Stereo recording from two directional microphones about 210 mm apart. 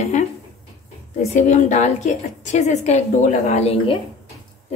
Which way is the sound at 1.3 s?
35° left (ahead or behind).